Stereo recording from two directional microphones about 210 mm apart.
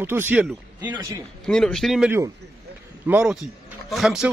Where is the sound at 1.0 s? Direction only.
20° right (ahead or behind).